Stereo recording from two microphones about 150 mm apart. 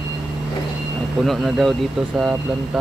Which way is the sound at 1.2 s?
Centre (ahead or behind).